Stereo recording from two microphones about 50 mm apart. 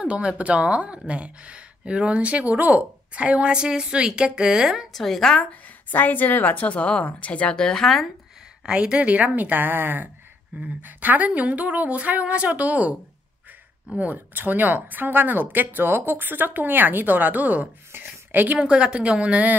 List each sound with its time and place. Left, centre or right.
0.0 s a woman's voice: right
4.9 s a woman's voice: centre
5.4 s a woman's voice: left
7.5 s a woman's voice: centre
8.6 s a woman's voice: centre
13.9 s speech: right
17.9 s a sound: right
18.6 s a woman's voice: centre